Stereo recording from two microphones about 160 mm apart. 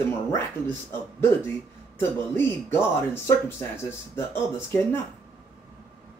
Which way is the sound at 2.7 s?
15° left (ahead or behind).